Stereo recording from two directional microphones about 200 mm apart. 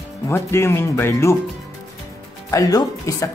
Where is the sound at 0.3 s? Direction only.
15° left (ahead or behind).